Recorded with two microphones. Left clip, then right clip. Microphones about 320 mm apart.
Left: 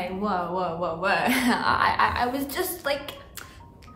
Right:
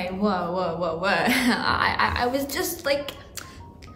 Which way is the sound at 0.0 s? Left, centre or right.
Centre.